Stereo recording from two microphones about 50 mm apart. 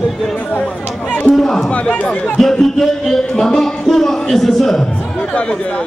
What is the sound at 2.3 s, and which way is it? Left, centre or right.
A man's voice, centre.